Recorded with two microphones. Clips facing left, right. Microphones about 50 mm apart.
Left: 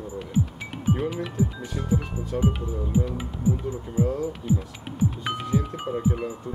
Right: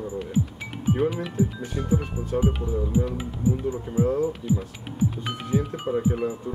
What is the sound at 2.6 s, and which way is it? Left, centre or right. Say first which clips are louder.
Speech: right 2 dB; centre.